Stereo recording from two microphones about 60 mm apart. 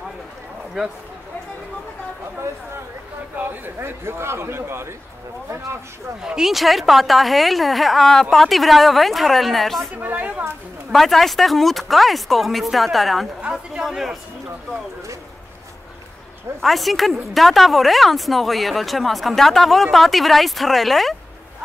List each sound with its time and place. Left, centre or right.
3.3 s a man's voice: right
6.2 s a woman's voice: centre
9.9 s speech: right
10.9 s a woman's voice: centre
16.6 s a woman's voice: centre